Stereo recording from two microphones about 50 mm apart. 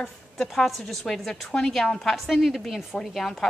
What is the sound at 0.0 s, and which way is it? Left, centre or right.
A woman's voice, centre.